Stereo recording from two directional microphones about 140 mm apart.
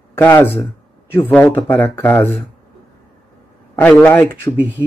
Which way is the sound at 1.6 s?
15° left (ahead or behind).